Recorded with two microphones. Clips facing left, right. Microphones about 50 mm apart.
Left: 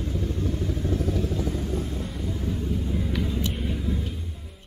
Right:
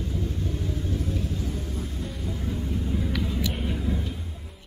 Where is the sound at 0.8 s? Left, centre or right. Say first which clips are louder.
Left 7 dB; left.